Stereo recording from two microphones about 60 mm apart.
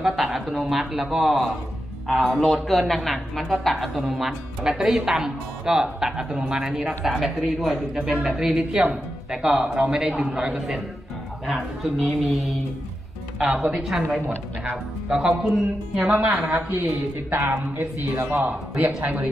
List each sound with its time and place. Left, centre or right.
0.0 s a man's voice: centre
11.4 s a man's voice: centre
13.7 s a man's voice: centre
15.0 s a man's voice: centre
16.1 s a man's voice: right